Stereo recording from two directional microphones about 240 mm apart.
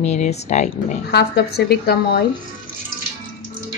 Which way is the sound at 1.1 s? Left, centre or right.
Left.